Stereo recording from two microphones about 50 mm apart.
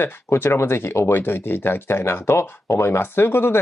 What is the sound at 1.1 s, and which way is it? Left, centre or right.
Speech, left.